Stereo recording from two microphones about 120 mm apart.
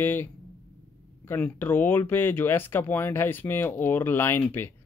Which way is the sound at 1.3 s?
15° left (ahead or behind).